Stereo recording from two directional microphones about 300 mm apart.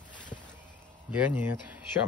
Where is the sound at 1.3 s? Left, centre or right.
Centre.